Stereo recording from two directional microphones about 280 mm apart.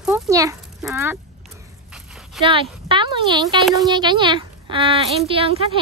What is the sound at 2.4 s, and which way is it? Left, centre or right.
Speech, centre.